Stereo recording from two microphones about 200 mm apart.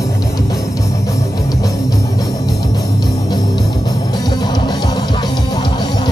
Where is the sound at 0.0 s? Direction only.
15° left (ahead or behind).